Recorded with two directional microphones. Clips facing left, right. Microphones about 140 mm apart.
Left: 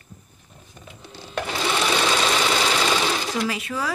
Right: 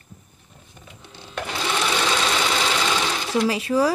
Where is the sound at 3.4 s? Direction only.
35° right (ahead or behind).